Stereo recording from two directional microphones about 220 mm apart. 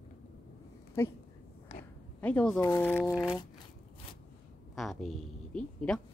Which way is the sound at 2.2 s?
5° left (ahead or behind).